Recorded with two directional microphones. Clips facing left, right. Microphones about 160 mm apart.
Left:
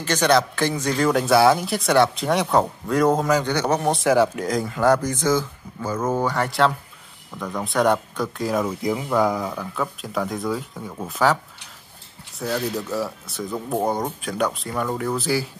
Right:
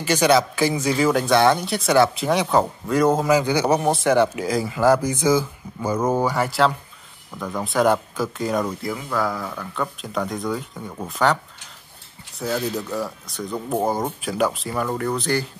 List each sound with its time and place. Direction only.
0.0 s speech: 10° right (ahead or behind)
8.8 s speech: 20° left (ahead or behind)
9.8 s speech: centre (ahead or behind)
12.4 s speech: centre (ahead or behind)